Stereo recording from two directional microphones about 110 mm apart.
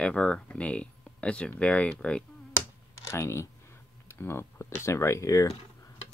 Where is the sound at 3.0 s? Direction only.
25° left (ahead or behind).